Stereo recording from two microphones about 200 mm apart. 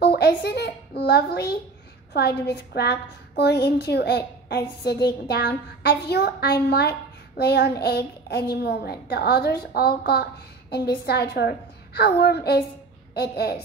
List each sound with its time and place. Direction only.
0.0 s a child's voice: 50° left (ahead or behind)